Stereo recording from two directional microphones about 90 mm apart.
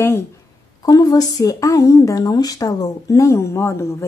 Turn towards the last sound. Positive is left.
turn(degrees=30)  # may be behind; listen again after turning